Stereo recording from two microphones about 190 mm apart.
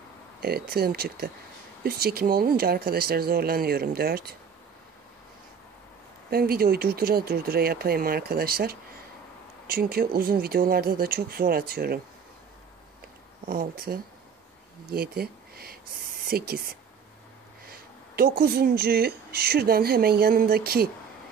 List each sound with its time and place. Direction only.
0.4 s speech: 55° right (ahead or behind)
6.3 s speech: 55° right (ahead or behind)
13.5 s speech: 50° right (ahead or behind)
17.6 s speech: 55° right (ahead or behind)